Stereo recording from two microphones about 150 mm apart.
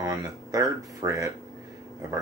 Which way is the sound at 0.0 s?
25° right (ahead or behind).